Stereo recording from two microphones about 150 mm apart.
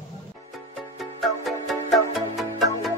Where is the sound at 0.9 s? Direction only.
Centre (ahead or behind).